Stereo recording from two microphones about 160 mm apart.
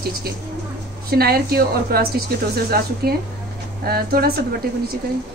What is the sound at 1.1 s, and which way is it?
A woman's voice, 75° right (ahead or behind).